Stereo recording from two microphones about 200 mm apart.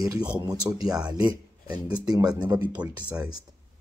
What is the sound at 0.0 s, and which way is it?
Speech, 15° right (ahead or behind).